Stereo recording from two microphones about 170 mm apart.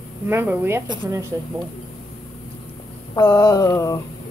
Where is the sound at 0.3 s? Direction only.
10° right (ahead or behind).